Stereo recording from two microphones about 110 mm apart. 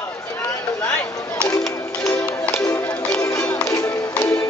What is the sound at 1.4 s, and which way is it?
Music, 10° left (ahead or behind).